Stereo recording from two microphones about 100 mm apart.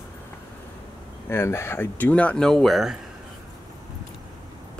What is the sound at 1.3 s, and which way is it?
Speech, 25° left (ahead or behind).